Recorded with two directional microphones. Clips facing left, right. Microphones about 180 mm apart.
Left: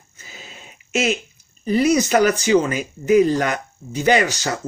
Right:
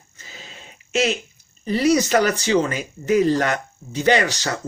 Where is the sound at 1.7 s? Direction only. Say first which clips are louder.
Left 1 dB; 35° right (ahead or behind).